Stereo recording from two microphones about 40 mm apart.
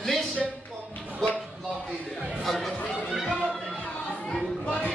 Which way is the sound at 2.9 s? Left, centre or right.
Centre.